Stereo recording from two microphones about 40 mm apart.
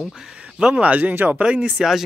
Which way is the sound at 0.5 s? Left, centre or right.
Right.